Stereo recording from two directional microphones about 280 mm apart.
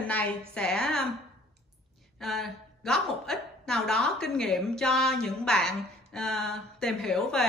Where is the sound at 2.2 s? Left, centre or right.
Centre.